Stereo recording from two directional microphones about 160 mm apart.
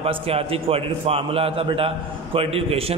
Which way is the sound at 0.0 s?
40° right (ahead or behind).